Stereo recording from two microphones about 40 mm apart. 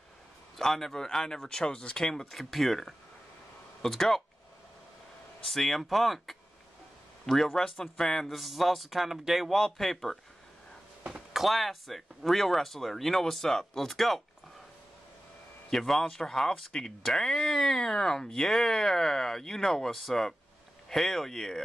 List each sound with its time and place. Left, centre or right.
0.6 s speech: centre
2.3 s speech: centre
5.5 s speech: centre
8.4 s speech: centre
9.5 s speech: centre
11.3 s speech: centre
15.7 s speech: centre
21.3 s speech: centre